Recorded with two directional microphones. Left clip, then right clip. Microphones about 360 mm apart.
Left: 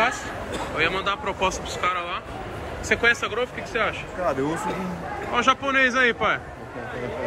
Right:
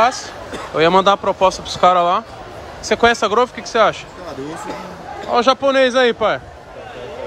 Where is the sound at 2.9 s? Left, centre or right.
Centre.